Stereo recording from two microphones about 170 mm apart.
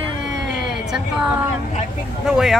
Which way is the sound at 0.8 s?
5° right (ahead or behind).